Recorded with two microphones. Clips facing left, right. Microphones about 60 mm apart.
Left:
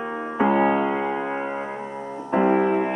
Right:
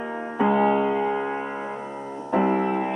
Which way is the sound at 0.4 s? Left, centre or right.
Left.